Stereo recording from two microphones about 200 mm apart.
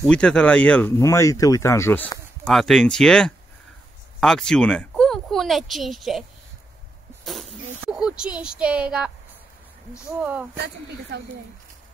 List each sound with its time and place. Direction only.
0.0 s speech: 5° left (ahead or behind)
2.4 s speech: centre (ahead or behind)
7.8 s speech: 5° right (ahead or behind)
10.5 s a woman's voice: 55° right (ahead or behind)